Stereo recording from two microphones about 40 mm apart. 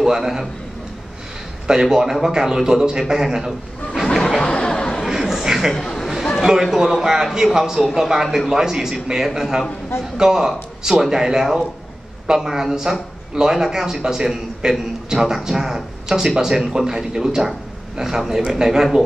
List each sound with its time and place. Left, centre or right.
0.0 s a man's voice: centre
1.7 s a man's voice: centre
4.4 s a sound: centre
5.1 s a sound: centre
5.7 s speech: centre
6.4 s a man's voice: centre